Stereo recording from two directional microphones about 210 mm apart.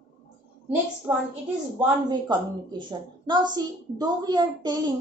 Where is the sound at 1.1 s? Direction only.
15° right (ahead or behind).